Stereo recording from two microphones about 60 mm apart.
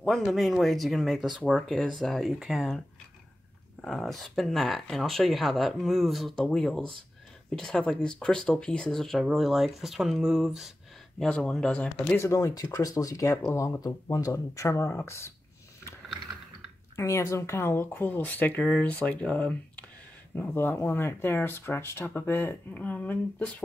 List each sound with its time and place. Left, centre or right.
0.0 s speech: centre
3.8 s speech: centre
11.2 s speech: centre
12.4 s speech: left
13.6 s speech: left
16.9 s speech: left